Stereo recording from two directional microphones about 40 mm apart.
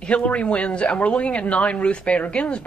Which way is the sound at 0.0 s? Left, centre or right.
Left.